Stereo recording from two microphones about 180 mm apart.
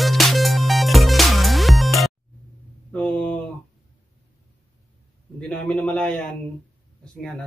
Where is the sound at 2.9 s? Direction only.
5° left (ahead or behind).